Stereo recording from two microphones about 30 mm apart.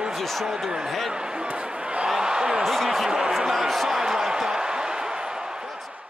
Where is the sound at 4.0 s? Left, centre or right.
Centre.